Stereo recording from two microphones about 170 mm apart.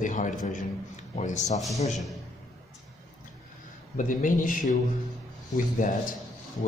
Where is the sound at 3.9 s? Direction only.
50° left (ahead or behind).